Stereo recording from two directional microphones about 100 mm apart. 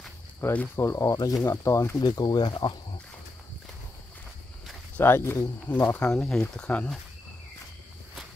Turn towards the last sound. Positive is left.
turn(degrees=10)  # may be behind; listen again after turning